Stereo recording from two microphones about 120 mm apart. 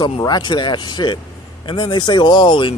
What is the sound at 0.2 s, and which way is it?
Speech, 35° left (ahead or behind).